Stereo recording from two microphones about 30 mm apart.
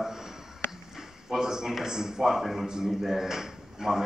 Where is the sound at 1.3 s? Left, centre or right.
Centre.